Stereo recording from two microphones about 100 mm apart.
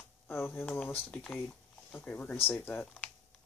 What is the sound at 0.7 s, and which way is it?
Speech, 15° left (ahead or behind).